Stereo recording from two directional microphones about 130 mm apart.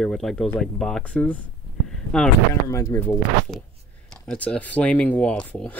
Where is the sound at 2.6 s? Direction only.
20° left (ahead or behind).